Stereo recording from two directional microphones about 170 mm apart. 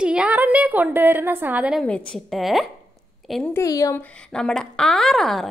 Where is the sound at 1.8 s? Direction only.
5° left (ahead or behind).